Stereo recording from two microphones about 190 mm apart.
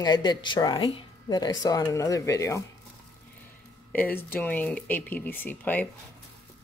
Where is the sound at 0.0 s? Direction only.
20° left (ahead or behind).